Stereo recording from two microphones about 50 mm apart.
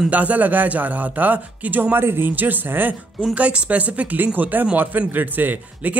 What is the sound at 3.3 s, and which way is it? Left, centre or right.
A man's voice, right.